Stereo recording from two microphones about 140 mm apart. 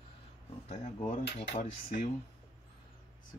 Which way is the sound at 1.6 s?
70° left (ahead or behind).